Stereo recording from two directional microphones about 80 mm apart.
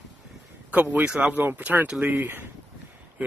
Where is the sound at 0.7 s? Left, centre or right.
Centre.